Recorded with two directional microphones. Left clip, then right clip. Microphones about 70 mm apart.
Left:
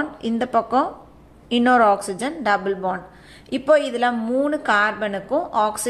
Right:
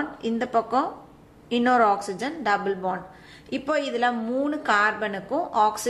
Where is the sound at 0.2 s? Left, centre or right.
Left.